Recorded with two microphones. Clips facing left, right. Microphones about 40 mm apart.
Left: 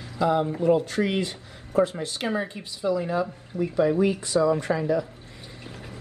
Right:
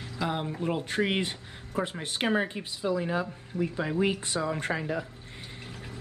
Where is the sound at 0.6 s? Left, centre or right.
Right.